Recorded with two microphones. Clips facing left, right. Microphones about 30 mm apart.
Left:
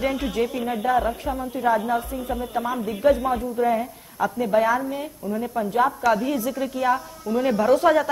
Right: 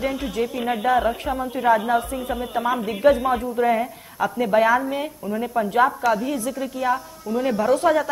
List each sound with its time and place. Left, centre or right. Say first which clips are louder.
0.0 s a woman's voice: left 1 dB; centre
0.6 s a woman's voice: right 4 dB; centre
5.9 s a woman's voice: even; centre